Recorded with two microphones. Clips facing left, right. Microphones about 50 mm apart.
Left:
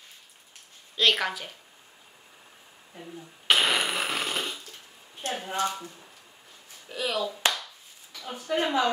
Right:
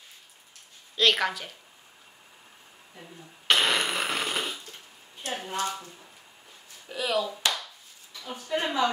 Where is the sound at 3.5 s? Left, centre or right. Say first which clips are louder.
Even; centre.